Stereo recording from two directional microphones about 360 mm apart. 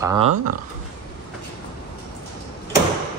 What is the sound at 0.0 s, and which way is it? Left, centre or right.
Speech, centre.